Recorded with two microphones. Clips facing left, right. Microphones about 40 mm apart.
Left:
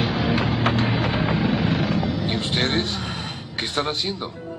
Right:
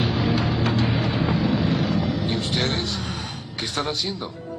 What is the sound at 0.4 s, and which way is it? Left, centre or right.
Vehicle, left.